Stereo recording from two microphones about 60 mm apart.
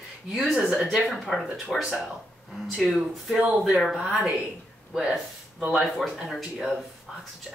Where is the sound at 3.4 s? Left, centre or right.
Centre.